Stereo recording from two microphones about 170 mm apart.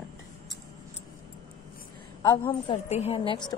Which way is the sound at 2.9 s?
40° left (ahead or behind).